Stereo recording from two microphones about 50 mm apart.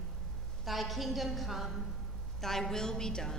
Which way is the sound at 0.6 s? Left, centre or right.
Centre.